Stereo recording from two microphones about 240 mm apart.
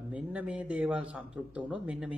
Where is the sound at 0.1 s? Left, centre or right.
Centre.